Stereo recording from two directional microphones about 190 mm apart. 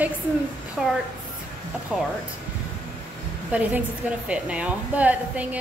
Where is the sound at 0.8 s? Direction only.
5° right (ahead or behind).